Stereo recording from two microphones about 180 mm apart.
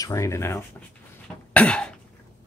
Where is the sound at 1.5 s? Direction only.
5° left (ahead or behind).